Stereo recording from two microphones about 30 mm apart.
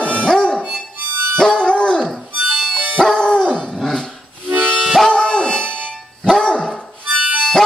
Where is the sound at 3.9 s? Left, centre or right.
Centre.